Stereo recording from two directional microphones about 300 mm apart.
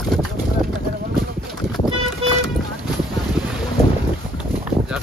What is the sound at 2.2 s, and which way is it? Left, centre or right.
Vehicle, centre.